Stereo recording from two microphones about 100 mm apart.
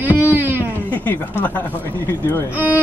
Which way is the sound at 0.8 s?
20° left (ahead or behind).